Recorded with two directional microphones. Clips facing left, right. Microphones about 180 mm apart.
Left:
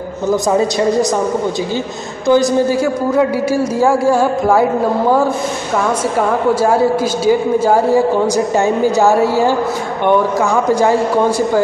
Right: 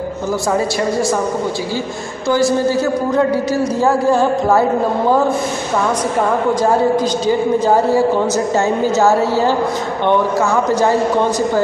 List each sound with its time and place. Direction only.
0.5 s a woman's voice: 20° left (ahead or behind)
2.2 s a man's voice: 15° left (ahead or behind)
7.2 s a man's voice: 10° left (ahead or behind)